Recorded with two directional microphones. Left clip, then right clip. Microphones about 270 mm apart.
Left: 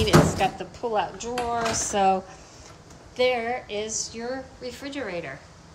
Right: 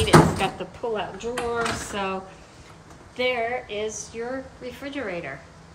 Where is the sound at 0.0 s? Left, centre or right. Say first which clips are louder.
Right 2 dB; centre.